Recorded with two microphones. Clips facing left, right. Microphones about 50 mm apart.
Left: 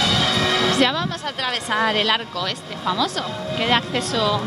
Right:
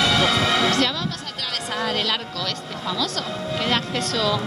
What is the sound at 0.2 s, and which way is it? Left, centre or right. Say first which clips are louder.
Music: right 1 dB; centre.